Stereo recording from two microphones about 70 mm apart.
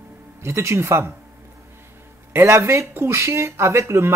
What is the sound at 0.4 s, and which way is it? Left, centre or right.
Speech, right.